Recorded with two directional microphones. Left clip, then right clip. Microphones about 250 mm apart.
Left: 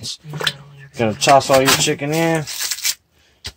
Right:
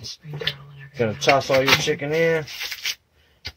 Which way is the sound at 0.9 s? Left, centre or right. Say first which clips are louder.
Left 6 dB; left.